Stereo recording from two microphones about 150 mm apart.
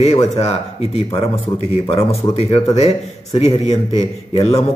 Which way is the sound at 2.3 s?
40° left (ahead or behind).